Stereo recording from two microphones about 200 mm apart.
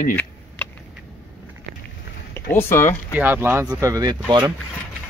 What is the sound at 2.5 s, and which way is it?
Speech, 10° left (ahead or behind).